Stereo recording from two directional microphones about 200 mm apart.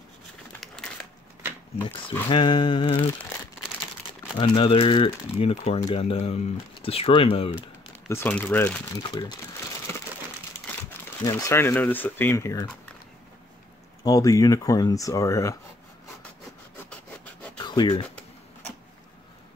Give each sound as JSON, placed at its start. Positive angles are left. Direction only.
{"t": 2.2, "sound": "speech", "side_deg": 25}
{"t": 4.4, "sound": "speech", "side_deg": 25}
{"t": 8.1, "sound": "speech", "side_deg": 10}
{"t": 9.1, "sound": "speech", "side_deg": 25}
{"t": 10.9, "sound": "speech", "side_deg": 15}
{"t": 14.0, "sound": "speech", "side_deg": 15}
{"t": 17.6, "sound": "a sound", "side_deg": 20}